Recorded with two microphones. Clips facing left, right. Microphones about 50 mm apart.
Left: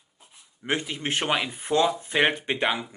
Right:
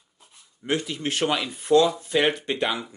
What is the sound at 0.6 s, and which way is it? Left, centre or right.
Speech, left.